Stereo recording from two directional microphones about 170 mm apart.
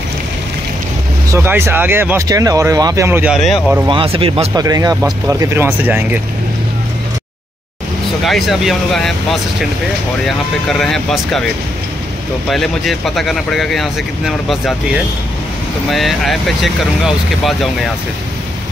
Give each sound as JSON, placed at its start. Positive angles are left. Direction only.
{"t": 1.3, "sound": "speech", "side_deg": -15}
{"t": 3.8, "sound": "speech", "side_deg": -30}
{"t": 4.6, "sound": "speech", "side_deg": -20}
{"t": 8.3, "sound": "speech", "side_deg": 0}
{"t": 12.4, "sound": "speech", "side_deg": 0}